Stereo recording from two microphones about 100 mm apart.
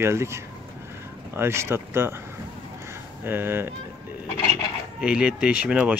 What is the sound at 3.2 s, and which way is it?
Speech, 20° right (ahead or behind).